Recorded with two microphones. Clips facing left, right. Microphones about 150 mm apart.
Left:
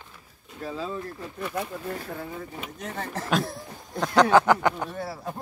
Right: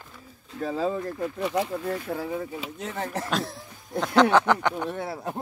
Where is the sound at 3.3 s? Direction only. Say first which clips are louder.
Left 2 dB; centre (ahead or behind).